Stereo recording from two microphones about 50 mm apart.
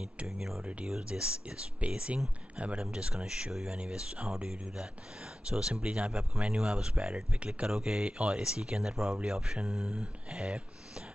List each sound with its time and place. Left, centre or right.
0.8 s speech: centre